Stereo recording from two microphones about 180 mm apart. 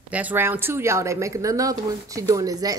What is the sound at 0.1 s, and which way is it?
A woman's voice, 10° right (ahead or behind).